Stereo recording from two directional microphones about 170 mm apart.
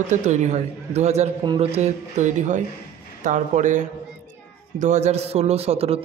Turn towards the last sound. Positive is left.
turn(degrees=-35)  # may be behind; listen again after turning